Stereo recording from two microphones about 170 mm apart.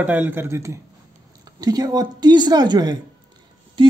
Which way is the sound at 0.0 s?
10° right (ahead or behind).